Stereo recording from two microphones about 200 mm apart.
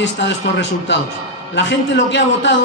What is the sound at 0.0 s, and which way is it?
A man's voice, 65° left (ahead or behind).